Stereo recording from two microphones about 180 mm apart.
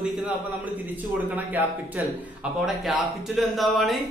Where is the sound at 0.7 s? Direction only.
10° right (ahead or behind).